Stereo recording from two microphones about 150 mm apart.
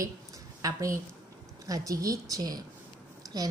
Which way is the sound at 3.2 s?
25° right (ahead or behind).